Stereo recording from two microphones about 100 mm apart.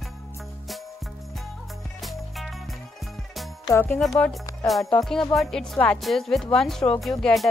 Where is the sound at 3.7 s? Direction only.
20° left (ahead or behind).